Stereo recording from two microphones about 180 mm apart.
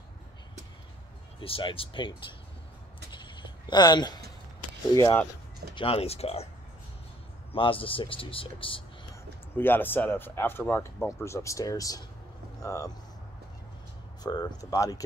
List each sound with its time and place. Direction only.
1.4 s speech: 30° left (ahead or behind)
3.1 s a sound: 25° left (ahead or behind)
4.9 s speech: 15° left (ahead or behind)
5.8 s speech: 35° left (ahead or behind)
7.5 s speech: 30° left (ahead or behind)
9.6 s speech: 10° left (ahead or behind)
14.2 s speech: 20° left (ahead or behind)